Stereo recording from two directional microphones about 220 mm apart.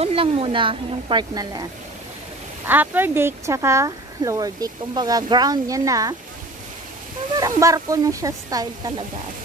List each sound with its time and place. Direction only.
0.0 s a woman's voice: 25° right (ahead or behind)
7.3 s speech: 15° right (ahead or behind)